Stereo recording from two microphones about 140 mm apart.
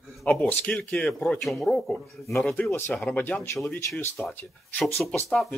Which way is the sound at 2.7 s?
15° left (ahead or behind).